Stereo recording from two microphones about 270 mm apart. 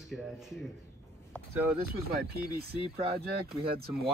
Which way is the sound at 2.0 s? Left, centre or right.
Right.